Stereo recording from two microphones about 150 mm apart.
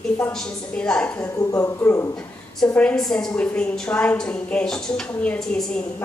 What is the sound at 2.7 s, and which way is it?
A woman's voice, 5° left (ahead or behind).